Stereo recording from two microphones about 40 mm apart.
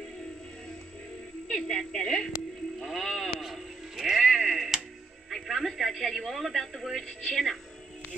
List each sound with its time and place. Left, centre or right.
1.5 s speech: centre
2.8 s a woman's voice: centre
3.9 s music: centre
5.3 s a woman's voice: centre